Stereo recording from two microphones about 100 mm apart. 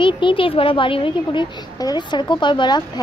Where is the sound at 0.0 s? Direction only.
60° left (ahead or behind).